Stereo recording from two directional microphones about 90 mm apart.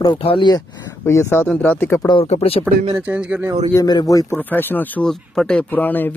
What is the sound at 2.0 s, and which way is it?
Speech, 80° left.